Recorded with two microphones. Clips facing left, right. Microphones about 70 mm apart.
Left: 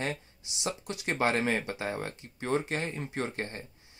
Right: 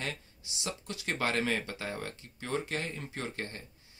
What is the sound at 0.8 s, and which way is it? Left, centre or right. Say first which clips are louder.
Speech: left 4 dB; left.